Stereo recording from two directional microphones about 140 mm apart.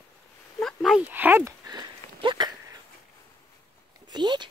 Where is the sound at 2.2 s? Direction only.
30° right (ahead or behind).